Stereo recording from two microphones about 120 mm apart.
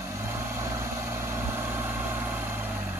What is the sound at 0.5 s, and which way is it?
Vehicle, 20° right (ahead or behind).